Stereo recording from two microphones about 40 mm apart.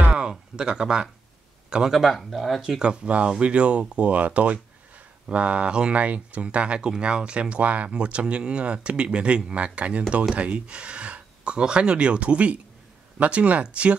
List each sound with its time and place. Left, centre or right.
0.6 s speech: right
2.0 s speech: centre
2.8 s speech: right
5.9 s speech: right